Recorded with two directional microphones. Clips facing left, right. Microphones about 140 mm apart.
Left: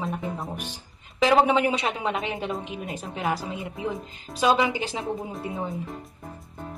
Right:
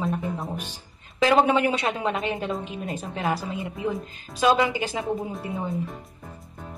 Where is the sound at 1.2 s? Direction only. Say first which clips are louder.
Even; 15° left (ahead or behind).